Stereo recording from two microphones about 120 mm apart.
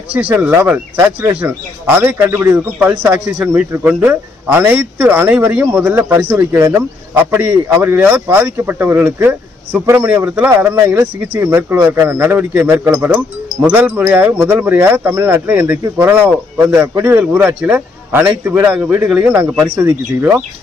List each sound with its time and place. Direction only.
0.1 s speech: 15° right (ahead or behind)